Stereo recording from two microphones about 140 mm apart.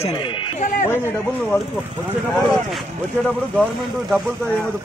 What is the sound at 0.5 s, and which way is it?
Speech, 70° left (ahead or behind).